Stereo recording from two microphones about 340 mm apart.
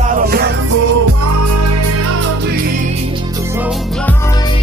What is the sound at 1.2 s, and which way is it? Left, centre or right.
Music, right.